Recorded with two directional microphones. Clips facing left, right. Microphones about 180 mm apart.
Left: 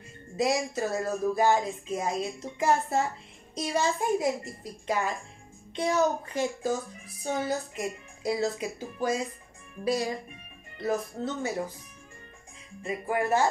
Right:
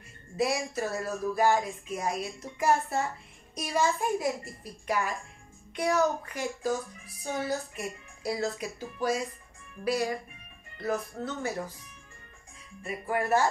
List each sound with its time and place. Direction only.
0.4 s speech: 20° left (ahead or behind)
13.1 s speech: 20° left (ahead or behind)